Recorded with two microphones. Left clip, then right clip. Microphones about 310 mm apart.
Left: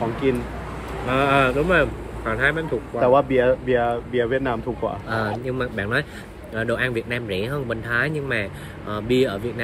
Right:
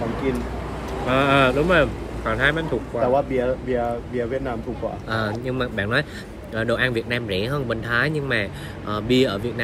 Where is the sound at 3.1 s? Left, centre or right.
Left.